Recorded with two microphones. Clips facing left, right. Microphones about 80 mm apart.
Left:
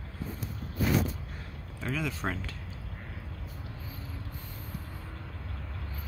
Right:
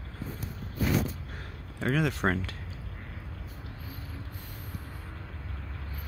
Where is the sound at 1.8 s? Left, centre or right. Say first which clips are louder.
Right 6 dB; right.